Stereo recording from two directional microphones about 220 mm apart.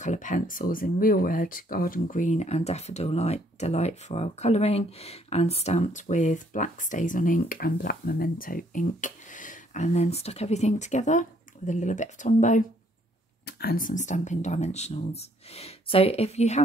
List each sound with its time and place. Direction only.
0.0 s speech: 35° left (ahead or behind)
13.5 s speech: 45° left (ahead or behind)